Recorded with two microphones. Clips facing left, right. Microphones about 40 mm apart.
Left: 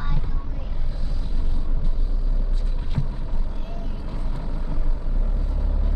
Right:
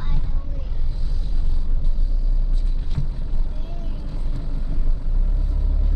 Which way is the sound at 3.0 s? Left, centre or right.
Centre.